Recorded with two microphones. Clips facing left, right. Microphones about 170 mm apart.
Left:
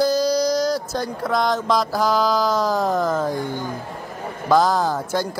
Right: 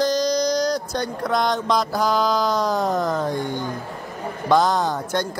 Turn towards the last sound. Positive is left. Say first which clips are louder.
# left 1 dB
turn(degrees=5)  # may be behind; listen again after turning